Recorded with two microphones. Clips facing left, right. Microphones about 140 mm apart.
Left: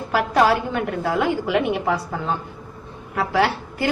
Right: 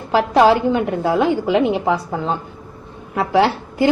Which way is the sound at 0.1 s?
20° right (ahead or behind).